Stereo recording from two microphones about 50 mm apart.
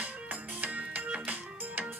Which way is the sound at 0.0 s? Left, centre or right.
Right.